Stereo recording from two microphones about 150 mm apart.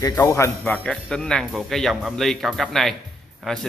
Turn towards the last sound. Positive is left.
turn(degrees=0)  # may be behind; listen again after turning